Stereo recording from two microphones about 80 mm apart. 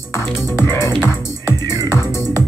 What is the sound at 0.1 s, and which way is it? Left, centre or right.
Speech, left.